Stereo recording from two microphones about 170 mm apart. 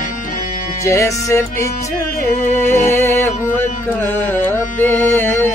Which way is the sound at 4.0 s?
10° left (ahead or behind).